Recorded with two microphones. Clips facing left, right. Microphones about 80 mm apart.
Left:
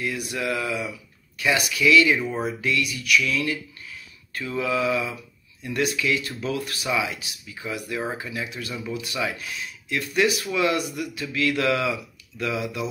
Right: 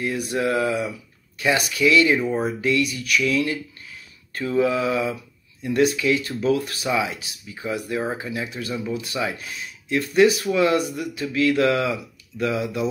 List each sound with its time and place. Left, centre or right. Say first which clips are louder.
0.0 s speech: right 4 dB; right